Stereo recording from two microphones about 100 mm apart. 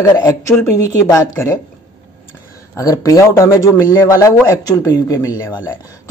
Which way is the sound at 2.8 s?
35° left (ahead or behind).